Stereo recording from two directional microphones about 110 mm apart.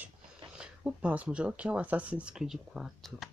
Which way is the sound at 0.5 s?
10° right (ahead or behind).